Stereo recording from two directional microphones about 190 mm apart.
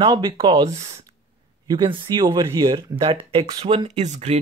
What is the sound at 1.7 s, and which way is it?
Speech, 25° right (ahead or behind).